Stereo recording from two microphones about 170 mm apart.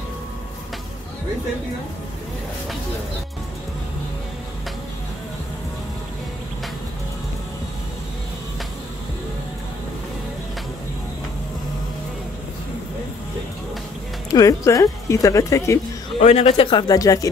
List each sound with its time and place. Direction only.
14.3 s speech: 20° left (ahead or behind)
16.2 s speech: 40° left (ahead or behind); by 17.3 s 20° left (ahead or behind)